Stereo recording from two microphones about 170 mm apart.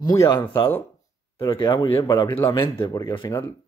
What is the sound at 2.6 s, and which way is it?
Speech, 30° left (ahead or behind).